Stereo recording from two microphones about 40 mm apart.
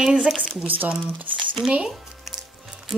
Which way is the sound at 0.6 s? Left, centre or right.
Right.